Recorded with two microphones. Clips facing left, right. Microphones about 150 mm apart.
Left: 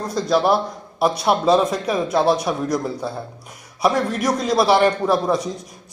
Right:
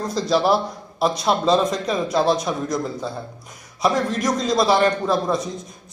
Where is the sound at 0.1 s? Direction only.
Centre (ahead or behind).